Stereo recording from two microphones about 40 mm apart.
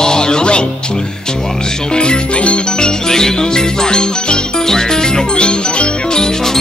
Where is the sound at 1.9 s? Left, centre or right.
Left.